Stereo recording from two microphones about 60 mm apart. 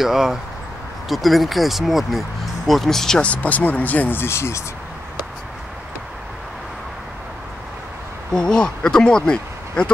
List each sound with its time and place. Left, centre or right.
0.0 s speech: centre
3.2 s speech: left
4.2 s speech: left
8.3 s speech: centre